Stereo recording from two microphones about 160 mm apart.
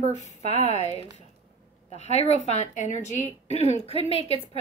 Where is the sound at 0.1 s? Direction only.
45° left (ahead or behind).